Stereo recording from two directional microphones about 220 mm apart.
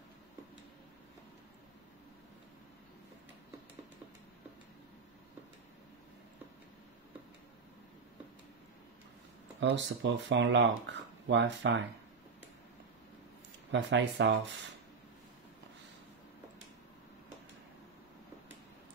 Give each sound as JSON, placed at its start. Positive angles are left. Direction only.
{"t": 9.6, "sound": "speech", "side_deg": -55}
{"t": 13.7, "sound": "speech", "side_deg": -55}